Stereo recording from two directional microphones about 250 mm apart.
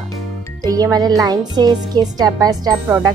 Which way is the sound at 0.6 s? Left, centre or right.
Centre.